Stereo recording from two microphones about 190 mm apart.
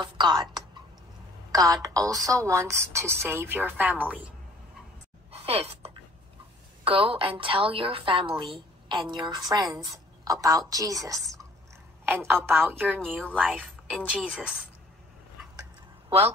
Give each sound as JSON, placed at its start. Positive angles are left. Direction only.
{"t": 0.0, "sound": "a woman's voice", "side_deg": -25}
{"t": 5.3, "sound": "a sound", "side_deg": -30}
{"t": 6.8, "sound": "a woman's voice", "side_deg": -30}